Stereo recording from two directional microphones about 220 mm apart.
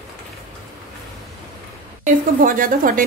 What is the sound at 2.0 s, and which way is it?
A woman's voice, 40° right (ahead or behind).